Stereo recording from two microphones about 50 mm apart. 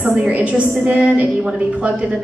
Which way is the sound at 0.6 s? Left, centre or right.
Right.